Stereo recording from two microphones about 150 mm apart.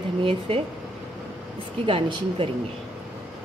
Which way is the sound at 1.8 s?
35° right (ahead or behind).